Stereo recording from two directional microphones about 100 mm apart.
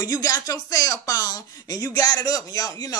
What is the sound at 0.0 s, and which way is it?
Speech, 40° left (ahead or behind).